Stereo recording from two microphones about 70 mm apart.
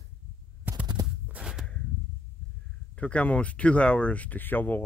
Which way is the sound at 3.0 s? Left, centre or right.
Centre.